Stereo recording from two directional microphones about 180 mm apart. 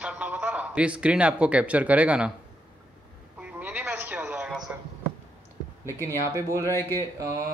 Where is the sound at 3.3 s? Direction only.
10° right (ahead or behind).